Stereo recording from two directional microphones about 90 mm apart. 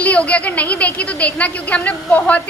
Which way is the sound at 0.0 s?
15° left (ahead or behind).